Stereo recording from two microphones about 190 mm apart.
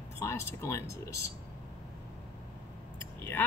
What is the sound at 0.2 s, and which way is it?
Speech, 15° left (ahead or behind).